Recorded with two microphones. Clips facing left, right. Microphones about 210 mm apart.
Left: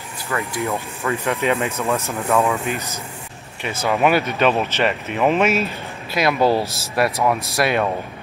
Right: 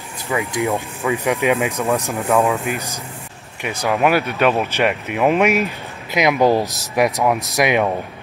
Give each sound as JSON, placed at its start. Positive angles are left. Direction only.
{"t": 0.3, "sound": "speech", "side_deg": -15}